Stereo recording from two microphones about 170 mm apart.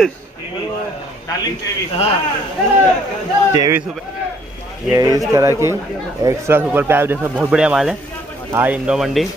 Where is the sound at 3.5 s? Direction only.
20° right (ahead or behind).